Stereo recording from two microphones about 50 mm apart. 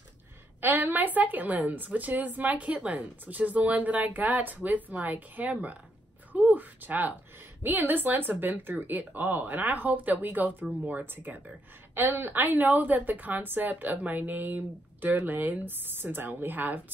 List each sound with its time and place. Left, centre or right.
0.6 s a woman's voice: right
11.9 s a woman's voice: right